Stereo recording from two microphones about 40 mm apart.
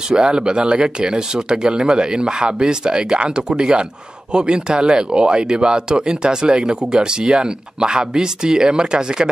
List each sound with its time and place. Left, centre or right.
0.1 s speech: right